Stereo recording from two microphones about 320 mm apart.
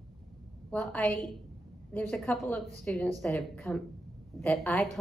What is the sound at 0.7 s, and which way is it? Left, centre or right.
A woman's voice, centre.